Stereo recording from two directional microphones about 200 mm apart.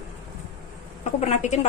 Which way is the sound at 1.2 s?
35° left (ahead or behind).